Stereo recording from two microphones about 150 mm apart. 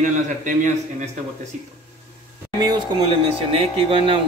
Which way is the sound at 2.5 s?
25° right (ahead or behind).